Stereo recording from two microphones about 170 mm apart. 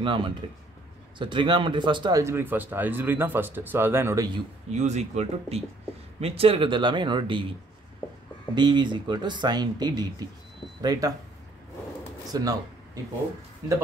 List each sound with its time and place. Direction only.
0.0 s speech: 30° right (ahead or behind)
4.6 s speech: 40° right (ahead or behind)
8.5 s speech: 25° right (ahead or behind)
12.3 s speech: 20° right (ahead or behind)